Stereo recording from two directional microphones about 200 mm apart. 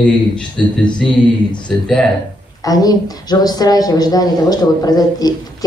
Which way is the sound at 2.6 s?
20° left (ahead or behind).